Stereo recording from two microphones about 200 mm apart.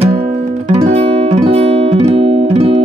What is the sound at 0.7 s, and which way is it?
Music, 35° right (ahead or behind).